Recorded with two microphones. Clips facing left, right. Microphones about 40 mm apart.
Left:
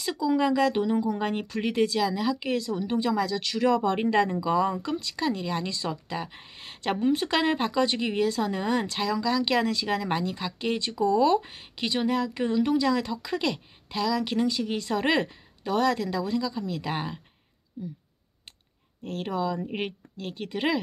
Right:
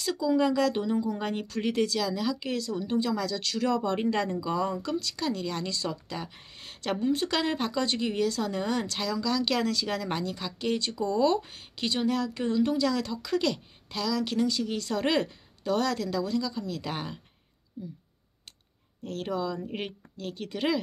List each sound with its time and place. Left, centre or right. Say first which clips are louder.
0.0 s speech: left 1 dB; left
19.0 s a woman's voice: left 2 dB; left